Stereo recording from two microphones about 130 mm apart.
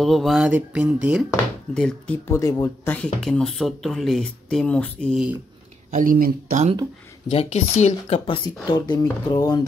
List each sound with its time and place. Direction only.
0.0 s speech: centre (ahead or behind)
1.7 s speech: 5° left (ahead or behind)
2.2 s speech: 25° left (ahead or behind)
2.9 s speech: 5° left (ahead or behind)
5.1 s speech: 10° right (ahead or behind)
5.9 s speech: 90° right
7.2 s speech: 55° left (ahead or behind)
8.3 s speech: 35° left (ahead or behind)